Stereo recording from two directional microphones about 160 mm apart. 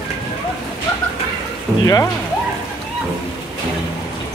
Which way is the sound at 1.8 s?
20° left (ahead or behind).